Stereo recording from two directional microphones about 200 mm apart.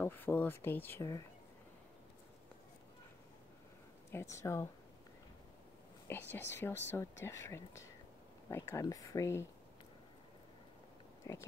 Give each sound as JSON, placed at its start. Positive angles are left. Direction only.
{"t": 0.0, "sound": "speech", "side_deg": 10}
{"t": 4.1, "sound": "speech", "side_deg": 15}
{"t": 6.0, "sound": "speech", "side_deg": 10}
{"t": 11.3, "sound": "speech", "side_deg": 15}